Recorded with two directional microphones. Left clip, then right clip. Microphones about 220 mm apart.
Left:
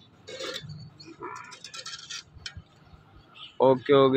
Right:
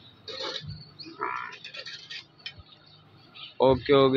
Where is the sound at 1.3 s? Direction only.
45° left (ahead or behind).